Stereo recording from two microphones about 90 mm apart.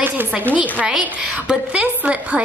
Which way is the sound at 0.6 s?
15° right (ahead or behind).